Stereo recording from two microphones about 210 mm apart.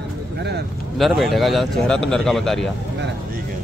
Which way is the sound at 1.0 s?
Centre (ahead or behind).